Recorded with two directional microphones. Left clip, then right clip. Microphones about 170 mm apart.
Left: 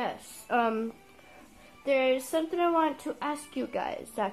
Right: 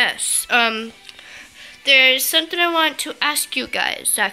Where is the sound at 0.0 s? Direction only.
15° right (ahead or behind).